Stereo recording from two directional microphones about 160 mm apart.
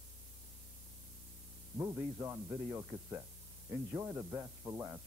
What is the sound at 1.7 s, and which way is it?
Speech, 15° right (ahead or behind).